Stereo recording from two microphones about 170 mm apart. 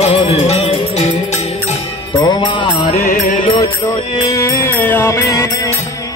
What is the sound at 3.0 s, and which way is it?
Music, 45° left (ahead or behind).